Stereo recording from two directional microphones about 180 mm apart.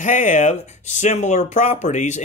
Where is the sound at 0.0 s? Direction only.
45° left (ahead or behind).